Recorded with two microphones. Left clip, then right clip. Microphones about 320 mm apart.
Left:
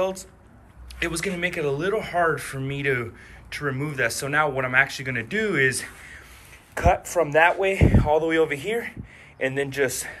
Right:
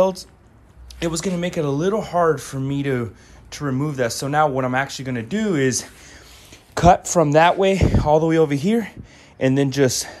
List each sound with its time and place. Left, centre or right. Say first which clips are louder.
0.0 s speech: right 7 dB; centre
7.2 s speech: right 4 dB; centre